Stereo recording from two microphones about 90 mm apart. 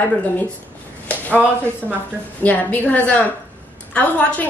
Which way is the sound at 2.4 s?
20° left (ahead or behind).